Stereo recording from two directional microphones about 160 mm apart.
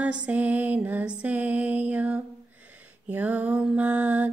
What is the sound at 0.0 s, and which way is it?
Mantra, 10° right (ahead or behind).